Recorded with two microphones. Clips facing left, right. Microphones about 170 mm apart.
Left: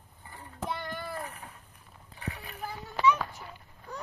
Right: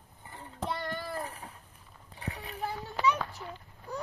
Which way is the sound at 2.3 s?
30° right (ahead or behind).